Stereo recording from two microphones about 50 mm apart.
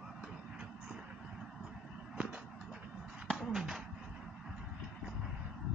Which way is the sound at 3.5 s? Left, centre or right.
Centre.